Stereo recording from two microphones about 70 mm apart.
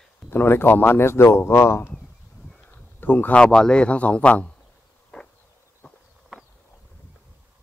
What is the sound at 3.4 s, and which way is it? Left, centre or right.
A man's voice, centre.